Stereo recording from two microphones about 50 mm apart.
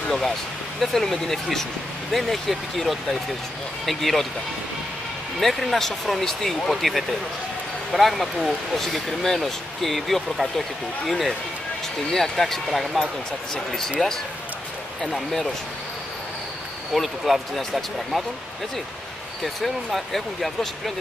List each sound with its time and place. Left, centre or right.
0.7 s speech: centre
5.4 s speech: centre
14.0 s speech: centre
15.0 s speech: centre
16.9 s speech: centre
19.4 s speech: centre